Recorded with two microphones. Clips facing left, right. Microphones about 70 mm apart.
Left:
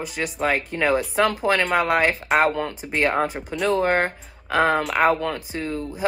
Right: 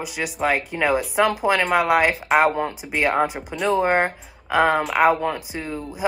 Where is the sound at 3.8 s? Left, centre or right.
Centre.